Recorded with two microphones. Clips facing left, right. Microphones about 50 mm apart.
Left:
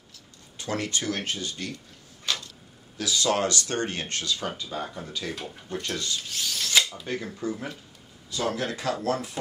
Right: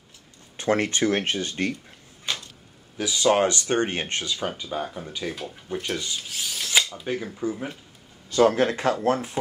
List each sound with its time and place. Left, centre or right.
0.6 s speech: right
2.3 s a sound: right
3.0 s speech: right
8.3 s speech: right